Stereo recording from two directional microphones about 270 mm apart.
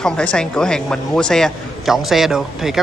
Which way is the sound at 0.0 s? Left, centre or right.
Centre.